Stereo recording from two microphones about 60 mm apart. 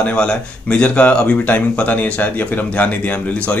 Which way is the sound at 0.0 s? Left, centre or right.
Centre.